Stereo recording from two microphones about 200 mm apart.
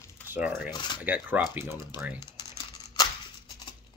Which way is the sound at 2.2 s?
20° left (ahead or behind).